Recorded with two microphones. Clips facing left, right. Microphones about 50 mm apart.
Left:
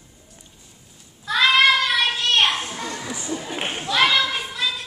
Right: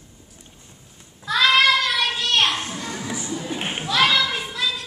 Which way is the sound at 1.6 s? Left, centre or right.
Centre.